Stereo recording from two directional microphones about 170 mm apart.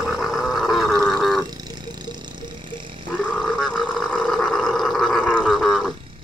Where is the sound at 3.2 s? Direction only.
5° left (ahead or behind).